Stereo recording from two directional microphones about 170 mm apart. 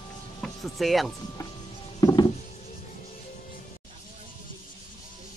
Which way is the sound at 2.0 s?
25° left (ahead or behind).